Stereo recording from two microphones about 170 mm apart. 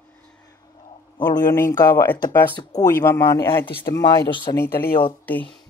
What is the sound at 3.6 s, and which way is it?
Speech, 25° left (ahead or behind).